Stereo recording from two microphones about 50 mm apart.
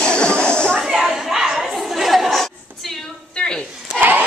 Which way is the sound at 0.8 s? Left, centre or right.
Centre.